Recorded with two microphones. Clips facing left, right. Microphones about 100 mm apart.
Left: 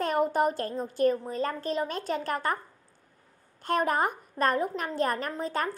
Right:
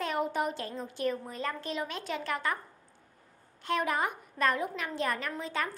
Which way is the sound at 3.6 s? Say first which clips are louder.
Left 4 dB; 45° left (ahead or behind).